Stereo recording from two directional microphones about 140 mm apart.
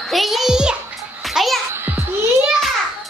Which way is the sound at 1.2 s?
Centre (ahead or behind).